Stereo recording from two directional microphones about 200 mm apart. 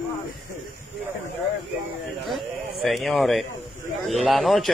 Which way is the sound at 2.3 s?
Centre (ahead or behind).